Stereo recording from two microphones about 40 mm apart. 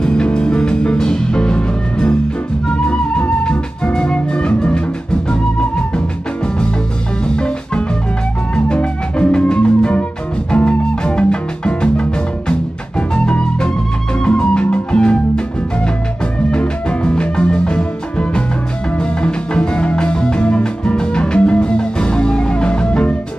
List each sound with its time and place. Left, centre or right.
0.0 s music: left